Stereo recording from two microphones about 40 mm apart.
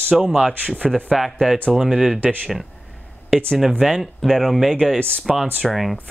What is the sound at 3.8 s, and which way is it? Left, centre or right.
Speech, centre.